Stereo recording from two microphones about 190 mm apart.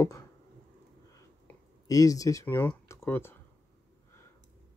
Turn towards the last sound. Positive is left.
turn(degrees=10)  # may be behind; listen again after turning